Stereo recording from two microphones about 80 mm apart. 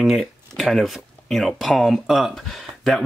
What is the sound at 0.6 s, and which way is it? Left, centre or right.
Speech, centre.